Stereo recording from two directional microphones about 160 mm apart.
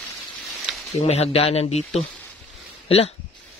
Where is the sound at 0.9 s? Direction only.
40° left (ahead or behind).